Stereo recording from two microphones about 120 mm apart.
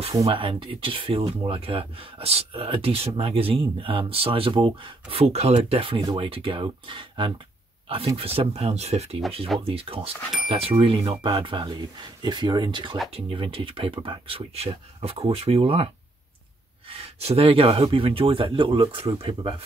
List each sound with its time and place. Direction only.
0.2 s speech: 50° right (ahead or behind)
13.1 s speech: 50° right (ahead or behind)